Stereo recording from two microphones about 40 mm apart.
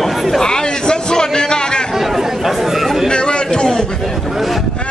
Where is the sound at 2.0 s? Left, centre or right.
Centre.